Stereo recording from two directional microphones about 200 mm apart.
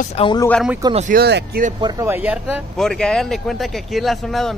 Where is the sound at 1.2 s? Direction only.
55° right (ahead or behind).